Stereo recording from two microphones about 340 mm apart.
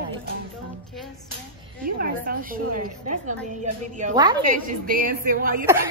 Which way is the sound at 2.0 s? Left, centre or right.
Right.